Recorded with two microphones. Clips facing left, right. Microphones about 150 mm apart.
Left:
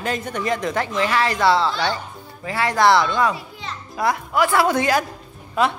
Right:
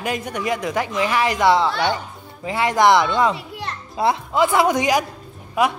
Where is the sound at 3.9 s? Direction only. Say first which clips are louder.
Right 1 dB; 25° right (ahead or behind).